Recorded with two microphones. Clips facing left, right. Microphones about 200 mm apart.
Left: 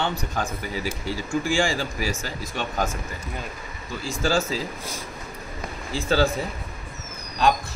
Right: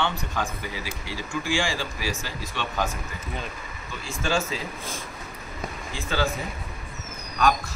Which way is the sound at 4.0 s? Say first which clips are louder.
Left 3 dB; 35° left (ahead or behind).